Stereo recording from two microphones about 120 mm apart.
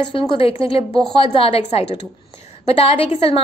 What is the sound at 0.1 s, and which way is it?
A woman's voice, 50° left (ahead or behind).